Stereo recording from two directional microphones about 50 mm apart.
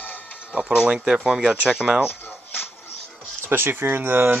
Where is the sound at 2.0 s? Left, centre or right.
Left.